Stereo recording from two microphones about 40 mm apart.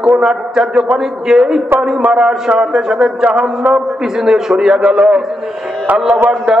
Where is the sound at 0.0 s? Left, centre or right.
Centre.